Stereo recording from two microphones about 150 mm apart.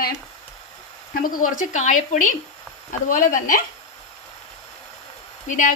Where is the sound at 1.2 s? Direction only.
65° left (ahead or behind).